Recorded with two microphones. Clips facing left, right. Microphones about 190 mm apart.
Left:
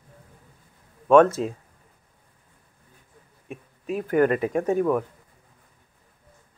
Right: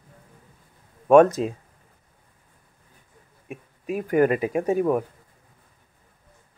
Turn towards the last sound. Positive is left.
turn(degrees=-15)  # may be behind; listen again after turning